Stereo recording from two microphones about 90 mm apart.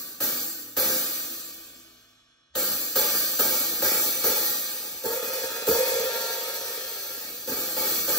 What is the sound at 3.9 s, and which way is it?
Music, 45° left (ahead or behind).